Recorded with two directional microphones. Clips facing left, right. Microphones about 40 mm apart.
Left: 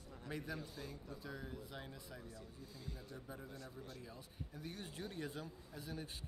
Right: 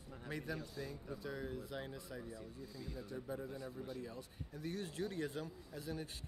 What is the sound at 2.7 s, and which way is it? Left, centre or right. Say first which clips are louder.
Speech: right 1 dB; left.